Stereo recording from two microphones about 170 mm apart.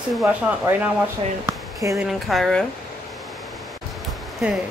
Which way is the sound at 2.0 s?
Centre (ahead or behind).